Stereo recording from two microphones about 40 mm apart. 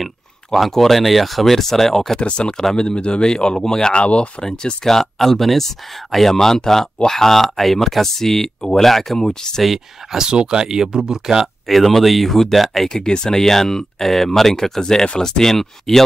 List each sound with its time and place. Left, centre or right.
0.5 s speech: centre
2.1 s speech: left
4.0 s speech: left
4.4 s speech: centre
9.3 s speech: centre
10.1 s speech: centre
11.6 s speech: centre
12.9 s speech: centre